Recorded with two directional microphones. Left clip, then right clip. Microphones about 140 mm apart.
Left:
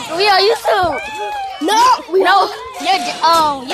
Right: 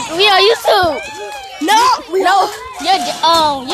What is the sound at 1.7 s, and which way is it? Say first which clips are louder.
Speech: right 1 dB; 80° right.